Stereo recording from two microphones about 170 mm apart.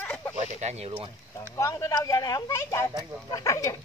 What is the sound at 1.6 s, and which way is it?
Speech, 20° left (ahead or behind).